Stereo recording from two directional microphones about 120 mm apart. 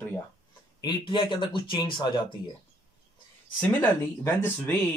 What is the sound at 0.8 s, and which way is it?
Speech, 40° left (ahead or behind).